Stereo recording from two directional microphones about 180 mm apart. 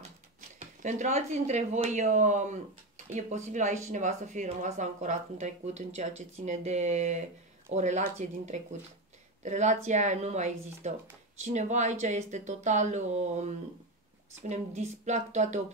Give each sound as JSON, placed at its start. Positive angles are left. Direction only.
{"t": 0.6, "sound": "speech", "side_deg": -40}
{"t": 14.5, "sound": "speech", "side_deg": -35}